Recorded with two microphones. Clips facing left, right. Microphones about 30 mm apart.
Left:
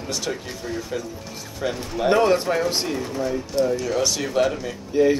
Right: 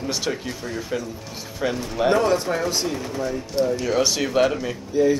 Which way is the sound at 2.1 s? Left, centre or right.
Centre.